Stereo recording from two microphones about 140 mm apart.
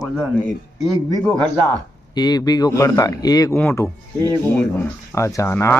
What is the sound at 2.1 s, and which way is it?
A man's voice, 30° left (ahead or behind).